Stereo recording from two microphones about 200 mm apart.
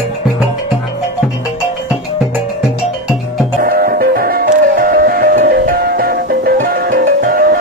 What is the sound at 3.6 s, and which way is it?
Music, 45° right (ahead or behind).